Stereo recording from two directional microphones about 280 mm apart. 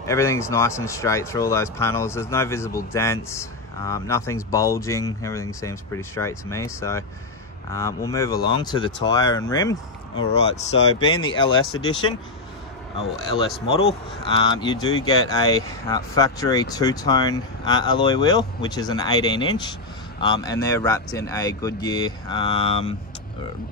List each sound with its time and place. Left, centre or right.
0.0 s speech: centre
13.7 s speech: left